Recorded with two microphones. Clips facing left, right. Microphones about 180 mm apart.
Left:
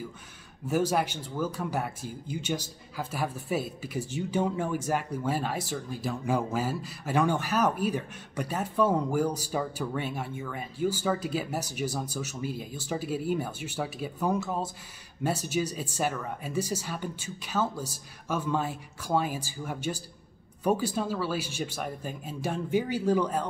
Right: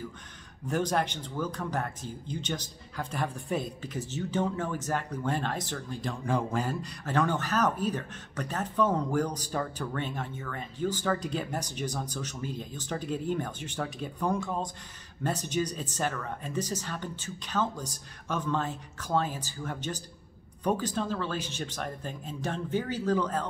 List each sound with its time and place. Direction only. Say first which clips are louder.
0.7 s speech: left 2 dB; 5° left (ahead or behind)